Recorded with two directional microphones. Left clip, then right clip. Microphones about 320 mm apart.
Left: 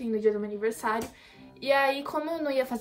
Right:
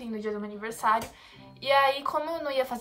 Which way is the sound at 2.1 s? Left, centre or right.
Right.